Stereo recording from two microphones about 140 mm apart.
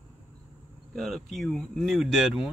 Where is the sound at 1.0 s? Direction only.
Centre (ahead or behind).